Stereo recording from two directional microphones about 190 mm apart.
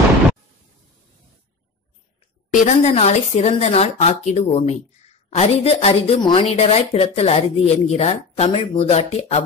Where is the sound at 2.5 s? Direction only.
40° left (ahead or behind).